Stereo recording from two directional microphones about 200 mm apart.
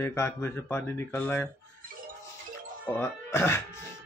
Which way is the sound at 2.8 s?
10° left (ahead or behind).